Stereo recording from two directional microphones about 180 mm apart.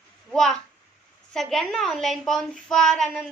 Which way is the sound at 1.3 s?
Centre (ahead or behind).